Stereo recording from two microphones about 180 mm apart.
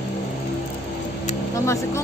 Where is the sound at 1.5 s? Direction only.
15° left (ahead or behind).